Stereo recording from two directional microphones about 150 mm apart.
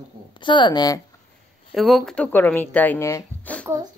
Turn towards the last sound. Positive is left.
turn(degrees=15)  # may be behind; listen again after turning